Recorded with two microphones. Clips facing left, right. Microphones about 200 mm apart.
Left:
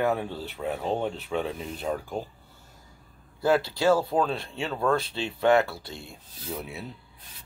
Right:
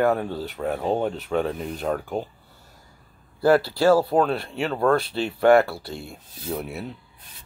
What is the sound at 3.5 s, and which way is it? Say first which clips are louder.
Speech: right 5 dB; 65° right (ahead or behind).